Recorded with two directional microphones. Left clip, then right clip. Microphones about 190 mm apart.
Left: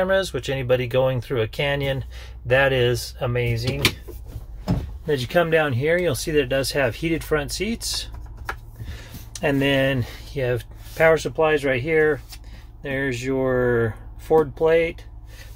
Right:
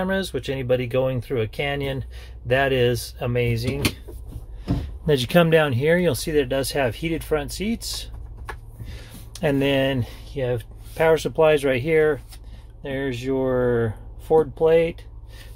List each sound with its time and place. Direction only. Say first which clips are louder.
0.0 s speech: left 4 dB; 10° right (ahead or behind); by 3.7 s 30° right (ahead or behind)
5.0 s speech: right 2 dB; 30° right (ahead or behind); by 10.7 s 5° right (ahead or behind)
11.0 s speech: left 1 dB; 25° right (ahead or behind)
12.8 s speech: left 2 dB; 10° right (ahead or behind)